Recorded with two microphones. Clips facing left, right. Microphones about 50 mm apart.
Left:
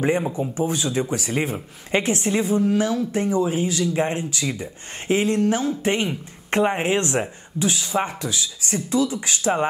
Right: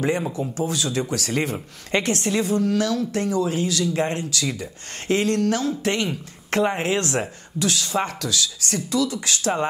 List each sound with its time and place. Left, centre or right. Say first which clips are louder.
0.0 s speech: left 2 dB; left